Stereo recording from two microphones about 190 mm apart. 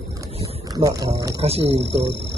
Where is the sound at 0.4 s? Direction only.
20° right (ahead or behind).